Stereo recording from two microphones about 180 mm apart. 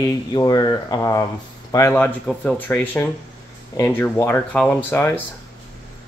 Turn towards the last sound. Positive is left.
turn(degrees=10)  # may be behind; listen again after turning